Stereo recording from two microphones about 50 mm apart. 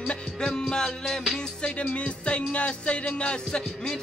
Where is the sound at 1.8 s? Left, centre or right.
Left.